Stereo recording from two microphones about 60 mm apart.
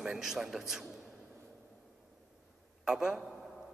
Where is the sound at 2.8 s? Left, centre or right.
Centre.